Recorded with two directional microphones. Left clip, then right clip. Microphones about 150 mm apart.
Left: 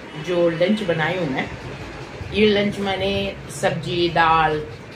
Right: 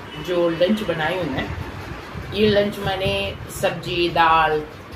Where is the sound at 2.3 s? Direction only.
Centre (ahead or behind).